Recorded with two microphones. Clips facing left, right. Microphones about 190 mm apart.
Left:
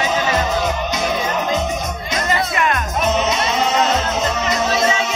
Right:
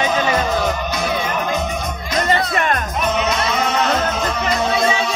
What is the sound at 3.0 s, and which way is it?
Music, 25° left (ahead or behind).